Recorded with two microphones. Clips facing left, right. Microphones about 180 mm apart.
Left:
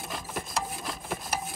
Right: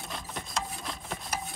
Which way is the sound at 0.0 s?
Centre (ahead or behind).